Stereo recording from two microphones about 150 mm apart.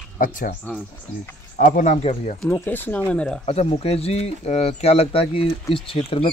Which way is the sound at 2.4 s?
10° left (ahead or behind).